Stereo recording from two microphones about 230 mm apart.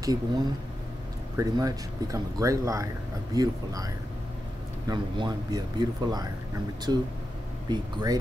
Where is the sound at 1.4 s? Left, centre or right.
Centre.